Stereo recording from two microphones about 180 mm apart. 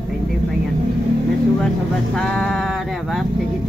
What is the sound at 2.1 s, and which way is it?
Music, centre (ahead or behind).